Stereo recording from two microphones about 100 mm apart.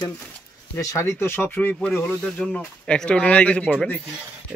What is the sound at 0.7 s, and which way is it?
Speech, 30° left (ahead or behind).